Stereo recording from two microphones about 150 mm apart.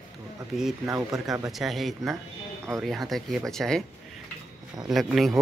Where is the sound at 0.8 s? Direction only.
20° right (ahead or behind).